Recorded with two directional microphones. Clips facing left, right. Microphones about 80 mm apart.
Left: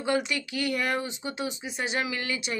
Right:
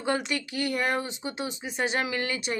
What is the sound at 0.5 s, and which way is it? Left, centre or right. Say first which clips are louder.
Speech: right 2 dB; right.